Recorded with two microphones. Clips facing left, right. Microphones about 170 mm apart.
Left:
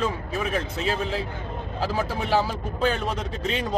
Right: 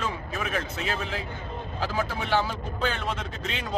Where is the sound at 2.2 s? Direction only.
35° left (ahead or behind).